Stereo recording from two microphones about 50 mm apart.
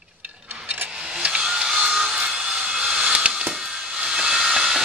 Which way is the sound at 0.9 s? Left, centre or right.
Centre.